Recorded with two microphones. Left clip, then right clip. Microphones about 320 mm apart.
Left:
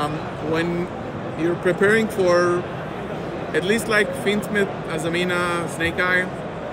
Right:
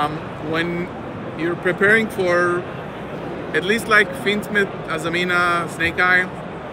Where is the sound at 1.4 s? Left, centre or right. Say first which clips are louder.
Right 1 dB; centre.